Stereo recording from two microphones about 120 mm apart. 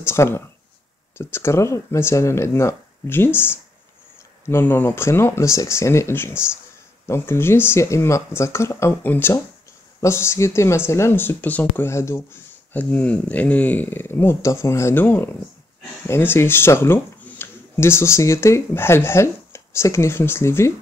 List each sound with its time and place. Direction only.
0.0 s speech: 20° left (ahead or behind)
4.5 s speech: 20° left (ahead or behind)